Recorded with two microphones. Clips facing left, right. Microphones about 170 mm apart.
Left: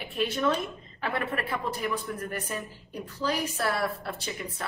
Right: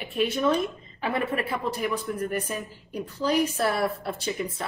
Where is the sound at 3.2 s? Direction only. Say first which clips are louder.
Right 5 dB; 20° right (ahead or behind).